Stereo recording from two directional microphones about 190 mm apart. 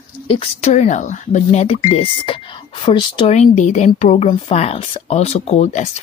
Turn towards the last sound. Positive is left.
turn(degrees=35)  # may be behind; listen again after turning